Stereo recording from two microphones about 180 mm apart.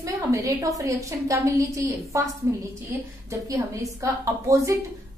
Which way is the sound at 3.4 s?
20° right (ahead or behind).